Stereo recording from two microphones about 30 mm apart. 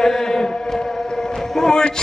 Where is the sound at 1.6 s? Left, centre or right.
Left.